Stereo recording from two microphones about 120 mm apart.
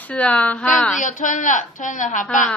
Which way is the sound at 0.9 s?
90° left.